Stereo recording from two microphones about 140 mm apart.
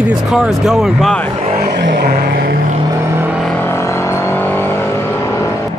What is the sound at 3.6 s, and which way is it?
Vehicle, 20° left (ahead or behind).